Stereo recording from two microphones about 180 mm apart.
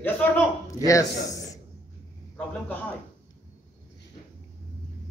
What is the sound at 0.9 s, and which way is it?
Speech, 20° left (ahead or behind).